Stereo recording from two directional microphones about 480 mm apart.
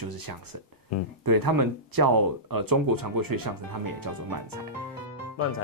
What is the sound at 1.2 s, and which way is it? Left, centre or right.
Speech, right.